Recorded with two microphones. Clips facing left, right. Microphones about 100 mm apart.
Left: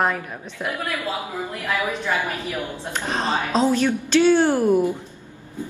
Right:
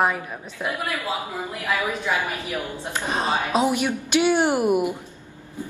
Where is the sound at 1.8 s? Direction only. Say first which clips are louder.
Left 2 dB; 15° right (ahead or behind).